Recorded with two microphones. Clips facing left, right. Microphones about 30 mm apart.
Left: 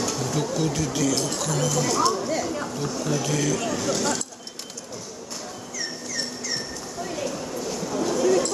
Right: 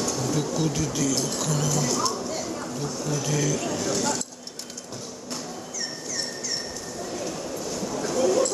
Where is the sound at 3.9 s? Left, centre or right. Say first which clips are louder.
Left 1 dB; left.